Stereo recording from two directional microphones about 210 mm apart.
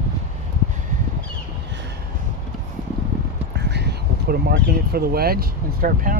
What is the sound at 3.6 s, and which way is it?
Speech, 50° right (ahead or behind).